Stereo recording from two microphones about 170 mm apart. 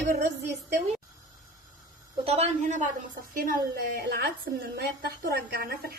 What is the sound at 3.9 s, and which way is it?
A woman's voice, 70° right (ahead or behind).